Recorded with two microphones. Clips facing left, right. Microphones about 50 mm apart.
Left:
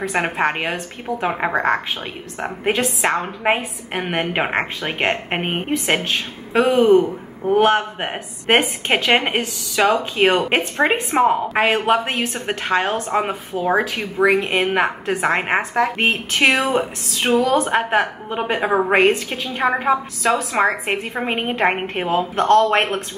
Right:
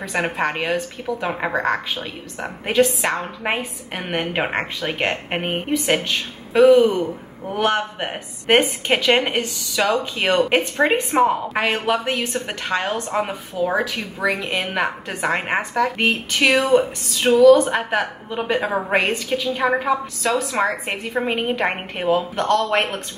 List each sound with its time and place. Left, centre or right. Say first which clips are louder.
0.2 s a woman's voice: even; centre
1.5 s a woman's voice: left 2 dB; left
11.8 s a woman's voice: left 3 dB; left
17.3 s speech: right 5 dB; left